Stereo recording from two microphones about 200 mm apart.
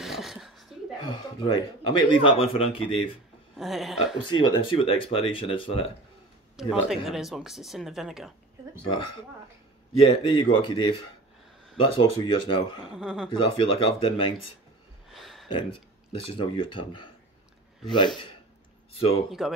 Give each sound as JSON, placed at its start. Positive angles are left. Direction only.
{"t": 0.0, "sound": "a sound", "side_deg": 0}
{"t": 1.1, "sound": "speech", "side_deg": 20}
{"t": 3.5, "sound": "speech", "side_deg": 0}
{"t": 4.2, "sound": "speech", "side_deg": 25}
{"t": 6.5, "sound": "speech", "side_deg": 0}
{"t": 10.0, "sound": "speech", "side_deg": 25}
{"t": 12.9, "sound": "speech", "side_deg": 0}
{"t": 13.4, "sound": "speech", "side_deg": 25}
{"t": 15.1, "sound": "a sound", "side_deg": 0}
{"t": 16.1, "sound": "speech", "side_deg": 25}
{"t": 18.9, "sound": "speech", "side_deg": 30}